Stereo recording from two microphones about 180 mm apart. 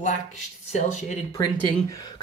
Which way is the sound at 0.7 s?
40° left (ahead or behind).